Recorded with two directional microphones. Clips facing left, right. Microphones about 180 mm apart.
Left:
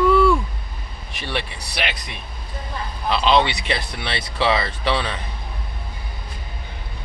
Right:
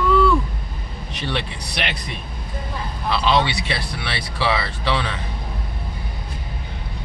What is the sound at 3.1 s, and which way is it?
Speech, 20° left (ahead or behind).